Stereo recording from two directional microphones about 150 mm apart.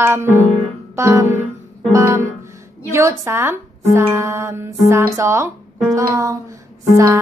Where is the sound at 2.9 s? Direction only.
20° right (ahead or behind).